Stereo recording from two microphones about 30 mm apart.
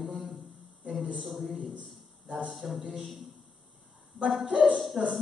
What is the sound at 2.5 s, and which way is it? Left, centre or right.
Speech, centre.